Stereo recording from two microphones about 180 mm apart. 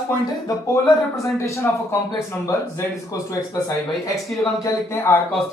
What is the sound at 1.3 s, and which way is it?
Speech, 15° left (ahead or behind).